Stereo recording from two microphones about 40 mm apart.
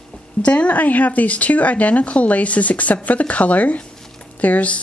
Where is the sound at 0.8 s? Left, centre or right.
Left.